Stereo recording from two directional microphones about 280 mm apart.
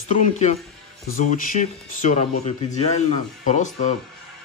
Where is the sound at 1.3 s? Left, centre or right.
Left.